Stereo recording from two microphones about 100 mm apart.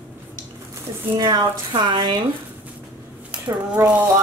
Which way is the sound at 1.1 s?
40° right (ahead or behind).